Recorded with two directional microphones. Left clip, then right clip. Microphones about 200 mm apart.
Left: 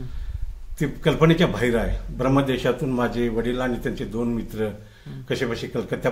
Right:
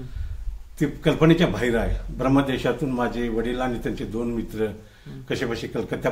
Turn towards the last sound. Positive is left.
turn(degrees=5)  # may be behind; listen again after turning